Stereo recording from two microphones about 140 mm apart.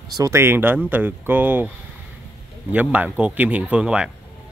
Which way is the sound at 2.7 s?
10° right (ahead or behind).